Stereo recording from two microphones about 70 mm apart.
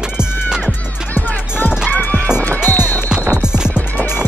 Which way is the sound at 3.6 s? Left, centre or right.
Left.